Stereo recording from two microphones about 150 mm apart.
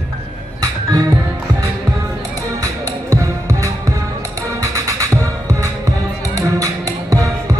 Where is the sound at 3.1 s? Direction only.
20° right (ahead or behind).